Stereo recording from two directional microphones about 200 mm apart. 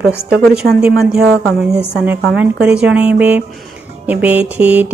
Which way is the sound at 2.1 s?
60° right (ahead or behind).